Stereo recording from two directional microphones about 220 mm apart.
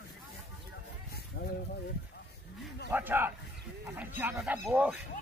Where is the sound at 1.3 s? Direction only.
60° left (ahead or behind).